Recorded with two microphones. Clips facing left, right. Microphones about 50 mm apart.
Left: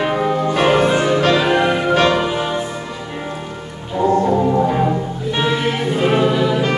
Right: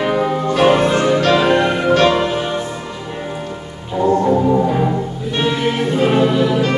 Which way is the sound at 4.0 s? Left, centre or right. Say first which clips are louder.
Right 1 dB; left.